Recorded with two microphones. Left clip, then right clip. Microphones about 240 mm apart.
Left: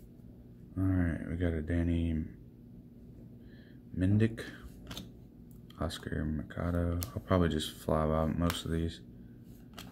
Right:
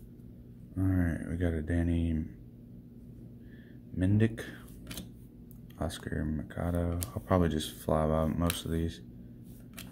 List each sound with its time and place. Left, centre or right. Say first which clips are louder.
0.7 s a sound: right 1 dB; centre
3.9 s speech: right 1 dB; centre
5.8 s speech: right 1 dB; centre